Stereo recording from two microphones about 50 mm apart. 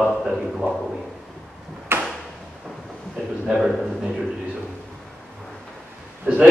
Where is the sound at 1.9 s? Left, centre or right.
Right.